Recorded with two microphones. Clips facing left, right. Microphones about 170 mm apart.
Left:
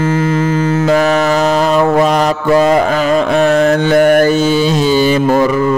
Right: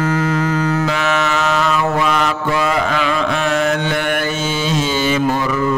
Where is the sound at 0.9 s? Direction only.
40° left (ahead or behind).